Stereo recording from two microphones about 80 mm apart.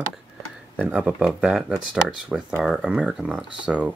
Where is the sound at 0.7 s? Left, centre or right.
Centre.